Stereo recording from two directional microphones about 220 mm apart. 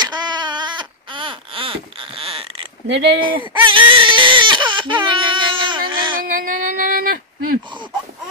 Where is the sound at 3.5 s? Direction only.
20° right (ahead or behind).